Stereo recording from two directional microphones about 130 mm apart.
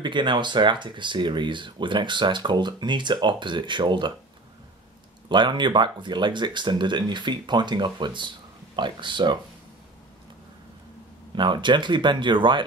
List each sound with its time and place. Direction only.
0.0 s speech: 35° right (ahead or behind)
5.3 s speech: 35° right (ahead or behind)
11.3 s speech: 35° right (ahead or behind)